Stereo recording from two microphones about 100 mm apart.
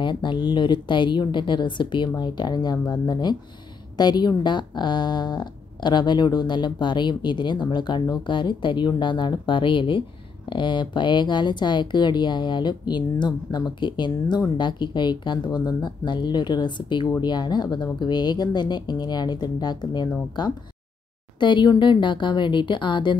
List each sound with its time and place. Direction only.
0.0 s speech: 55° left (ahead or behind)